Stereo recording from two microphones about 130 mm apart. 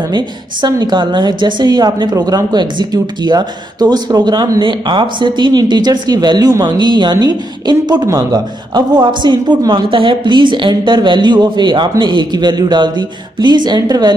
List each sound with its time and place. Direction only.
0.1 s a woman's voice: 30° right (ahead or behind)